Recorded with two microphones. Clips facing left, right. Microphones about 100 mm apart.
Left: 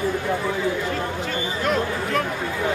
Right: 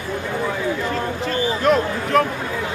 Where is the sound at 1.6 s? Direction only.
50° right (ahead or behind).